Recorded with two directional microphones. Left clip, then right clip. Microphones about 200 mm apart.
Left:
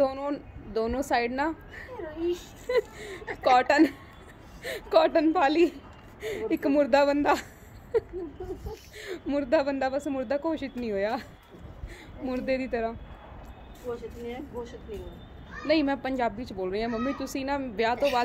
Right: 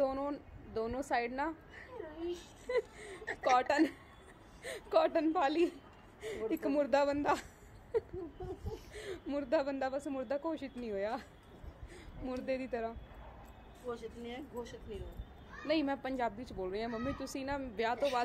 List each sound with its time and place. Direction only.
0.0 s a woman's voice: centre (ahead or behind)
2.1 s a woman's voice: 15° left (ahead or behind)
2.7 s a woman's voice: centre (ahead or behind)
12.3 s a woman's voice: 5° right (ahead or behind)
13.8 s speech: 40° right (ahead or behind)
15.6 s a woman's voice: 5° right (ahead or behind)